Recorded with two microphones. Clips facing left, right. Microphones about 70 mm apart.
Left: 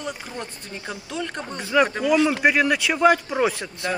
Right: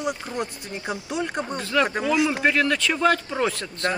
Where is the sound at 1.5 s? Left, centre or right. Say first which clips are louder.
Left 4 dB; centre.